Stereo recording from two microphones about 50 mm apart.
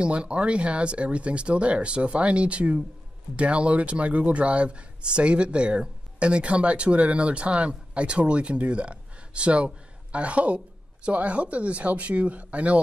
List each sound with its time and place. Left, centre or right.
0.0 s speech: right